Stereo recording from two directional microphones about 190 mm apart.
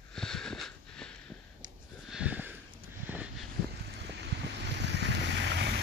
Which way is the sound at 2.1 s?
5° right (ahead or behind).